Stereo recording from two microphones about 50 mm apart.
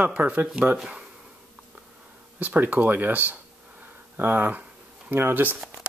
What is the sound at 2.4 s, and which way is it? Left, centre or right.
Speech, right.